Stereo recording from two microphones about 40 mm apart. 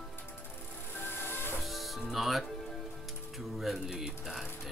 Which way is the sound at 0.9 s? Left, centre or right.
Left.